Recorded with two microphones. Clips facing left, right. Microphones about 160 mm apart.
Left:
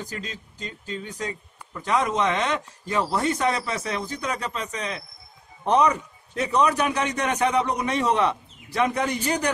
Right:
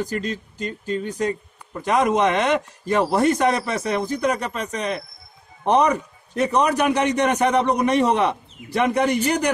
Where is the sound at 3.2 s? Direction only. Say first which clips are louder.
Right 5 dB; 60° right (ahead or behind).